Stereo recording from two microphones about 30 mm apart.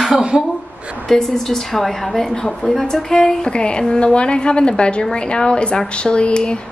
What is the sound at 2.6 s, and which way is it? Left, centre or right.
Speech, centre.